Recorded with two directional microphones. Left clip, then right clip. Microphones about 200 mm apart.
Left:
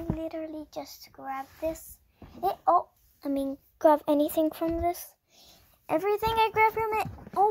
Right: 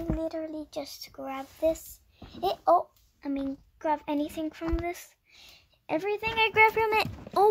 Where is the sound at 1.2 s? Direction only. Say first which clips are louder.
Right 4 dB; 20° right (ahead or behind).